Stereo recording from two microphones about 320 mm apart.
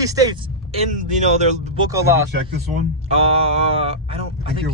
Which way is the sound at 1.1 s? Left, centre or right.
Right.